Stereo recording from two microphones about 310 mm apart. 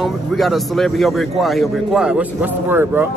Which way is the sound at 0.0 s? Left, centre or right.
Centre.